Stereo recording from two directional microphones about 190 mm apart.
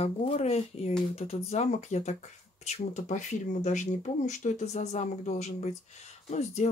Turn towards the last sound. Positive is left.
turn(degrees=35)  # may be behind; listen again after turning